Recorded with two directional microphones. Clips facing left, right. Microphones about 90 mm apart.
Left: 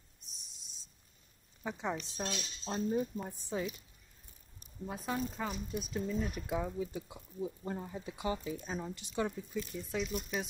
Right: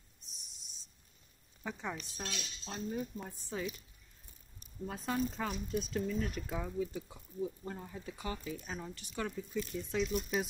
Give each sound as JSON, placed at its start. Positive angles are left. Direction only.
{"t": 1.6, "sound": "speech", "side_deg": 15}
{"t": 4.8, "sound": "speech", "side_deg": 10}
{"t": 9.8, "sound": "speech", "side_deg": 5}